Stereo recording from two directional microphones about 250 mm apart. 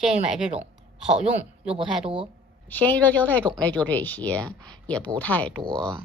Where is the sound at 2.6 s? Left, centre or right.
Centre.